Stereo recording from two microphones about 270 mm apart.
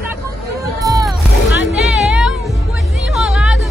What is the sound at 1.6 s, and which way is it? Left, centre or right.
Music, centre.